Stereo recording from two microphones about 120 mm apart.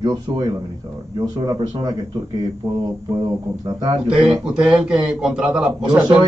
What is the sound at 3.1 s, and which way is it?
Speech, 25° right (ahead or behind).